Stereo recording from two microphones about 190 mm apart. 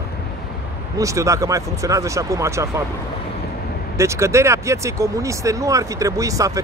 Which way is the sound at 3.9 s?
15° right (ahead or behind).